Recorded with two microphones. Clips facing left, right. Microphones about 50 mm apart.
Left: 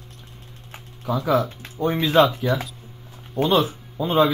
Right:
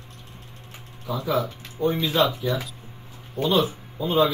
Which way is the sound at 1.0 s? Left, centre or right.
Left.